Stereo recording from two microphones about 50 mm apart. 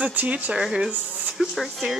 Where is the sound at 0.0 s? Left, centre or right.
Right.